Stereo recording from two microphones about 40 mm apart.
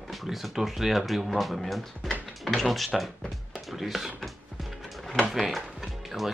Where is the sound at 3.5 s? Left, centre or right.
Centre.